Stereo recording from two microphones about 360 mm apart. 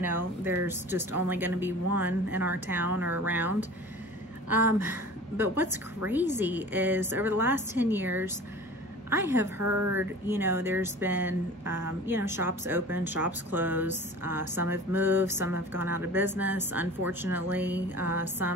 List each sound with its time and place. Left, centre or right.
0.0 s a woman's voice: centre
9.6 s speech: right
9.9 s a woman's voice: centre